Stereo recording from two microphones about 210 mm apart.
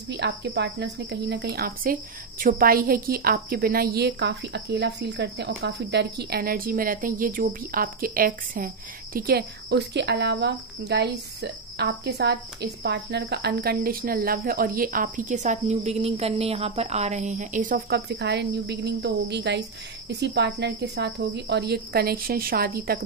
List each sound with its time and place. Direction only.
0.1 s speech: 55° right (ahead or behind)